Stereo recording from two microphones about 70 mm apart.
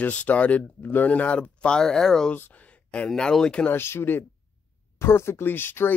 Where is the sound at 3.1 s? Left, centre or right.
Centre.